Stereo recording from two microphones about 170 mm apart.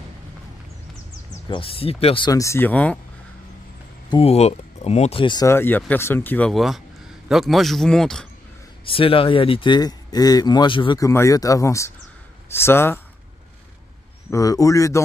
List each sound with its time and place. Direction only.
1.5 s speech: 35° left (ahead or behind); by 3.0 s 10° left (ahead or behind)
4.1 s speech: 35° left (ahead or behind); by 8.3 s 5° left (ahead or behind)
8.8 s speech: 30° left (ahead or behind); by 13.0 s 15° left (ahead or behind)
14.3 s speech: 20° left (ahead or behind)